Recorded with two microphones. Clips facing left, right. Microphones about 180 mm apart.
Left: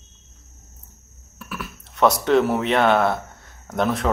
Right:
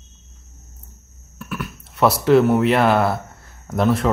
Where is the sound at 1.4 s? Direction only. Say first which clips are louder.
Right 4 dB; centre (ahead or behind).